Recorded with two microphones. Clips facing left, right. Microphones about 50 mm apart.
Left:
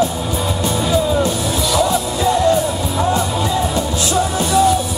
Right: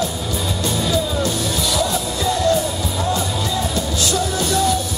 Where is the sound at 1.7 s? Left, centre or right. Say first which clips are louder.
Left 6 dB; centre.